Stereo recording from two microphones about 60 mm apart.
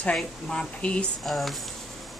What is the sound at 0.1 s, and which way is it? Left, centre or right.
Speech, centre.